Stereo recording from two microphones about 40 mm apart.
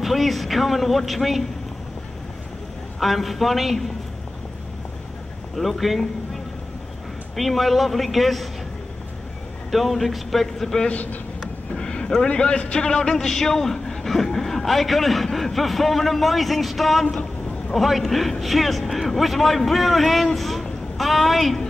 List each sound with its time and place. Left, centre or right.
0.0 s a man's voice: centre
3.0 s a man's voice: centre
5.6 s a man's voice: centre
7.3 s a man's voice: centre
9.7 s a man's voice: centre
10.9 s speech: left
11.7 s a sound: left
12.3 s a man's voice: left; by 21.6 s centre